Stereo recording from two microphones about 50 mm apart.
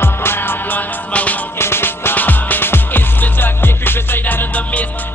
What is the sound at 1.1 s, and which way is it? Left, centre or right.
Music, left.